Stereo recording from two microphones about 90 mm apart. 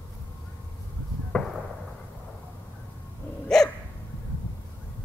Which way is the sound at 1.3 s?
5° left (ahead or behind).